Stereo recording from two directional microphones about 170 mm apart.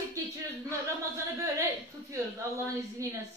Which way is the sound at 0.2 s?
20° right (ahead or behind).